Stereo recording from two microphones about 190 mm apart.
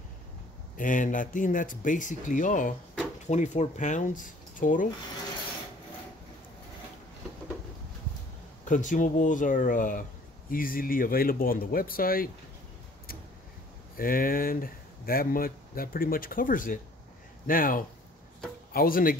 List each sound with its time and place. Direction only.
0.7 s speech: 45° left (ahead or behind)
8.6 s speech: 45° left (ahead or behind)
13.9 s speech: 50° left (ahead or behind)